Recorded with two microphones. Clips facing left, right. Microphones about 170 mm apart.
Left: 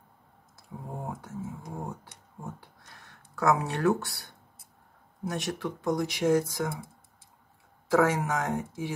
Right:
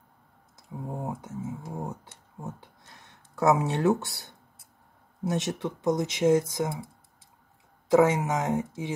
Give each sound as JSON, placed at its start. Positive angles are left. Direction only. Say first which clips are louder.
{"t": 0.6, "sound": "speech", "louder": "right 4 dB", "side_deg": -20}
{"t": 7.9, "sound": "speech", "louder": "right 3 dB", "side_deg": -20}